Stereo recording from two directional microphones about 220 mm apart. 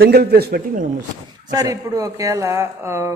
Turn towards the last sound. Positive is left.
turn(degrees=-10)  # may be behind; listen again after turning